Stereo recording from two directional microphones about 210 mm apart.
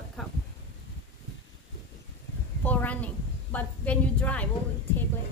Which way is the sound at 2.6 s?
5° left (ahead or behind).